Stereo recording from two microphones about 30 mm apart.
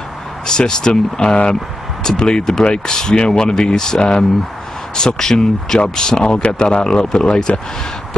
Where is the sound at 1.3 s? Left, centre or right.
Left; by 5.8 s centre.